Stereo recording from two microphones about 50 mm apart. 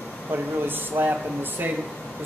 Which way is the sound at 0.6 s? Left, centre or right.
Right.